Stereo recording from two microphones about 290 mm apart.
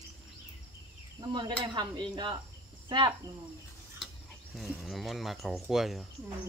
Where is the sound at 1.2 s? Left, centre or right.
Centre.